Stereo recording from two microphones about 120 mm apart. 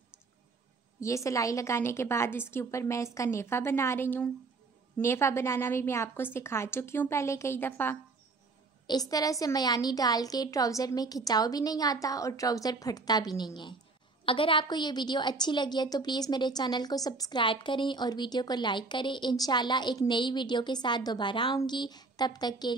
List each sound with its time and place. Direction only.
1.0 s a woman's voice: 25° left (ahead or behind)
8.8 s a woman's voice: 30° left (ahead or behind)